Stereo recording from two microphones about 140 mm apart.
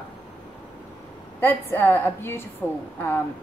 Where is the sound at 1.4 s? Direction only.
15° left (ahead or behind).